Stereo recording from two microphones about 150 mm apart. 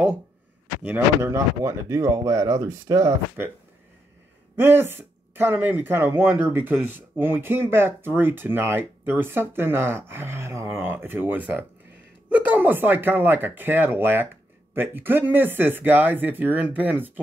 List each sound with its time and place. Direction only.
0.8 s speech: 15° right (ahead or behind)
4.6 s speech: 15° right (ahead or behind)